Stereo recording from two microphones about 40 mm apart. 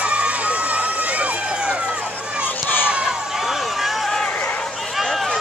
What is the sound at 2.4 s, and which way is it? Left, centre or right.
Run, left.